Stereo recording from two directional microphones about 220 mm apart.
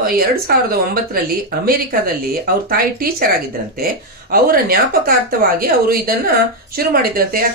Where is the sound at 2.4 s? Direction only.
40° right (ahead or behind).